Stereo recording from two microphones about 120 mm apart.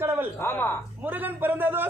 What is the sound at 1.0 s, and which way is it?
Speech, 15° right (ahead or behind).